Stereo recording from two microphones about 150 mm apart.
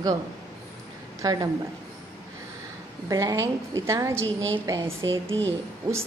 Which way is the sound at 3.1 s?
20° right (ahead or behind).